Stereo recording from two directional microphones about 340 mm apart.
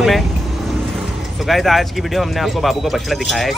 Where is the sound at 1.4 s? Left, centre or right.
Centre.